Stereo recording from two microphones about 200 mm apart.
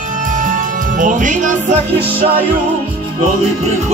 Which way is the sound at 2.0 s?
50° right (ahead or behind).